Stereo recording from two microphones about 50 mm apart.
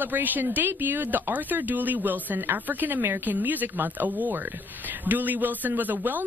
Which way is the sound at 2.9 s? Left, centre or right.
Right.